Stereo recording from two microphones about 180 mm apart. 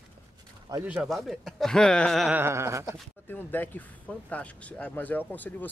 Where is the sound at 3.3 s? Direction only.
10° left (ahead or behind).